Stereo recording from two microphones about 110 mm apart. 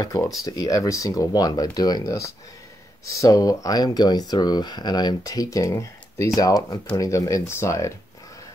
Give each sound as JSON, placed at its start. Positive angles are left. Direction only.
{"t": 0.0, "sound": "speech", "side_deg": 30}